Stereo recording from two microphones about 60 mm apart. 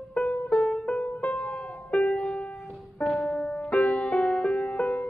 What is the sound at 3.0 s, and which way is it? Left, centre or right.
Music, centre.